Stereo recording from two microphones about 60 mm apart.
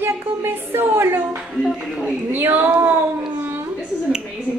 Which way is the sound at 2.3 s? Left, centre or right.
Right.